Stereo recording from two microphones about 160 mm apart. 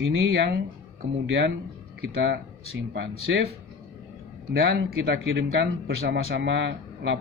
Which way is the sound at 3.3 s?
90° right.